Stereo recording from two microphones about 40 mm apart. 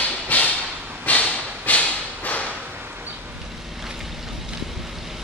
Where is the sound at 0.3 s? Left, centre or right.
Left.